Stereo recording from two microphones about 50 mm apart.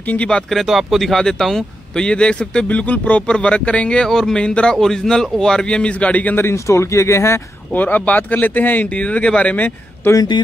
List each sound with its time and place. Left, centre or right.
0.7 s a man's voice: centre
2.0 s speech: centre
4.0 s a man's voice: centre; by 6.3 s left
6.5 s speech: left
7.7 s speech: left
10.0 s speech: left